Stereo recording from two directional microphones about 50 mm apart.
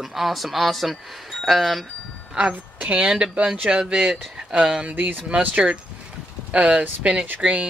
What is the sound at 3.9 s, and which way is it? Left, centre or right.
Speech, centre.